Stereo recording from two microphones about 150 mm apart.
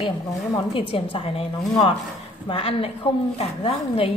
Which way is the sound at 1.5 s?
25° left (ahead or behind).